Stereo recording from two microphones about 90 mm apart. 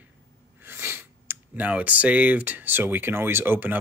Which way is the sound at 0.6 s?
25° right (ahead or behind).